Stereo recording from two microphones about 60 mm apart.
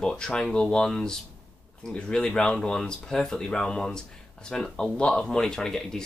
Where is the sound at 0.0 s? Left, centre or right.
Centre.